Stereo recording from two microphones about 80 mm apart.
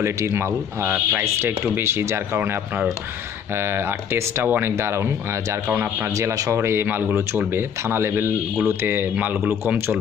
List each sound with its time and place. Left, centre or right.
0.0 s speech: right
3.5 s speech: right
6.1 s speech: right